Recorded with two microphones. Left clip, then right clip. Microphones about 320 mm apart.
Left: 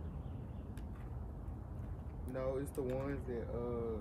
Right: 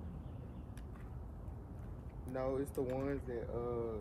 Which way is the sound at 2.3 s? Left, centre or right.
Right.